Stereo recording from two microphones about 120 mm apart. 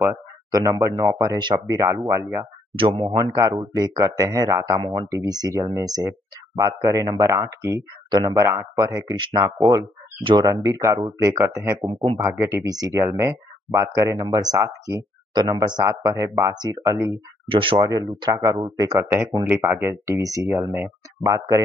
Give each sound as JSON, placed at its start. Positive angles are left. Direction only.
{"t": 0.5, "sound": "speech", "side_deg": -30}
{"t": 1.2, "sound": "a man's voice", "side_deg": -40}
{"t": 1.7, "sound": "speech", "side_deg": -30}
{"t": 2.7, "sound": "speech", "side_deg": -45}
{"t": 3.2, "sound": "a man's voice", "side_deg": -30}
{"t": 4.7, "sound": "a man's voice", "side_deg": -40}
{"t": 10.6, "sound": "speech", "side_deg": -25}
{"t": 11.9, "sound": "speech", "side_deg": -45}
{"t": 12.2, "sound": "a man's voice", "side_deg": -25}
{"t": 17.5, "sound": "speech", "side_deg": -45}
{"t": 17.7, "sound": "a man's voice", "side_deg": -35}
{"t": 19.4, "sound": "speech", "side_deg": -15}